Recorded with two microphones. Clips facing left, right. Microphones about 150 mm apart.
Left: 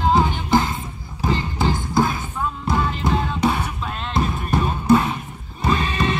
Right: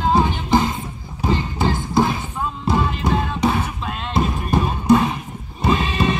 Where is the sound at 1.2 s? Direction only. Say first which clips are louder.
Right 1 dB; 15° right (ahead or behind).